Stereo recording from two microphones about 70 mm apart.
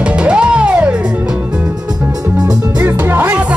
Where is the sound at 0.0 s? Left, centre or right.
Centre.